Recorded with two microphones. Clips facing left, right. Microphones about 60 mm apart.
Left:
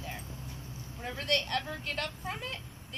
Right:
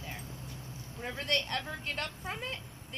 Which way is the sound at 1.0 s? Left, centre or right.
Centre.